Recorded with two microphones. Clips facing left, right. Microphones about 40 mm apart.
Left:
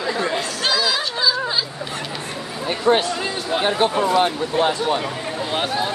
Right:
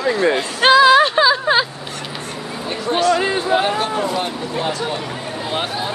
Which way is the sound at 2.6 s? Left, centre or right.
Centre.